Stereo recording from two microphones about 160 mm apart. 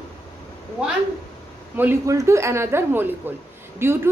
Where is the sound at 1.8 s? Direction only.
15° right (ahead or behind).